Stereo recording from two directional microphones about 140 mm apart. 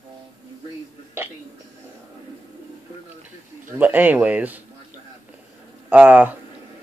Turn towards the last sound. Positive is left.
turn(degrees=-10)  # may be behind; listen again after turning